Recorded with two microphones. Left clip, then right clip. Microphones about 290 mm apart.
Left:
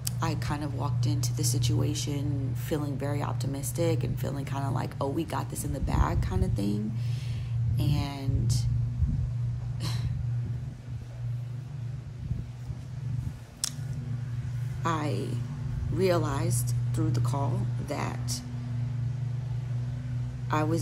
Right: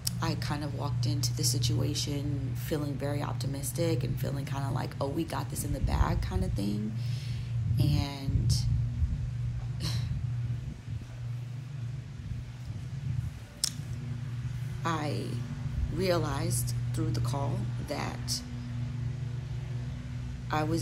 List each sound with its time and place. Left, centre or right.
0.2 s speech: centre
14.8 s speech: centre
20.4 s a man's voice: centre